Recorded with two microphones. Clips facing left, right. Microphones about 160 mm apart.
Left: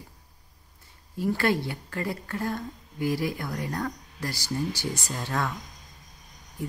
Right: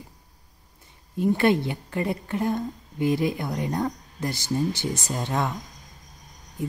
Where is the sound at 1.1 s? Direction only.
20° right (ahead or behind).